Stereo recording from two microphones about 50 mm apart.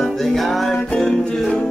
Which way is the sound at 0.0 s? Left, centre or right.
Centre.